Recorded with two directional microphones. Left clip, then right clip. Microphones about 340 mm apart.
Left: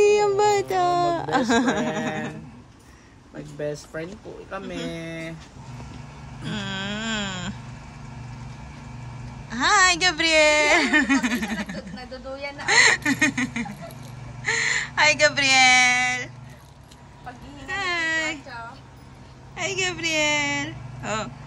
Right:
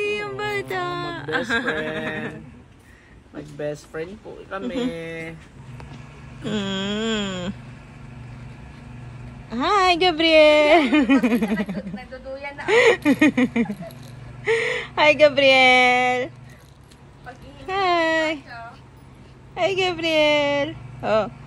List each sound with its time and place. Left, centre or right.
0.0 s a sound: centre
3.5 s speech: centre
6.4 s a woman's voice: centre
9.5 s a woman's voice: centre
12.6 s a woman's voice: centre
17.6 s a sound: centre
19.5 s a woman's voice: centre